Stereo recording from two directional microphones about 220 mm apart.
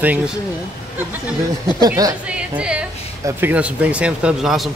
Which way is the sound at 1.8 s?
15° right (ahead or behind).